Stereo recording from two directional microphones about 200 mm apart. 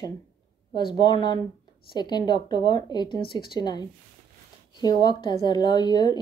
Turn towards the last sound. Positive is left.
turn(degrees=20)  # may be behind; listen again after turning